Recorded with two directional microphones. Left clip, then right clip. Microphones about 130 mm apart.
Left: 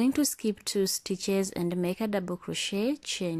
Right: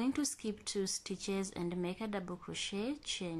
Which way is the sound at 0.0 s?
30° left (ahead or behind).